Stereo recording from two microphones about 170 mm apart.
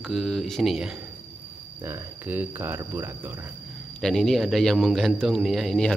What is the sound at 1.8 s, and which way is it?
Speech, 15° right (ahead or behind).